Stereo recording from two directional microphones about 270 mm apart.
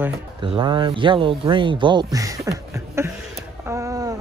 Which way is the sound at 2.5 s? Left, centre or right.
Centre.